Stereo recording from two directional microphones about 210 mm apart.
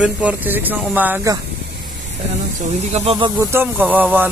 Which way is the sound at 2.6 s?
30° right (ahead or behind).